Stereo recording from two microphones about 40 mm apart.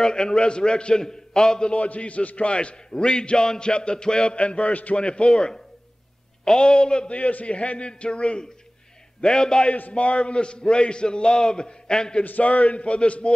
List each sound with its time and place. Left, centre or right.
0.0 s a man's voice: centre
1.7 s a man's voice: left
7.2 s a man's voice: left; by 9.7 s centre
9.9 s a man's voice: left
12.3 s a man's voice: left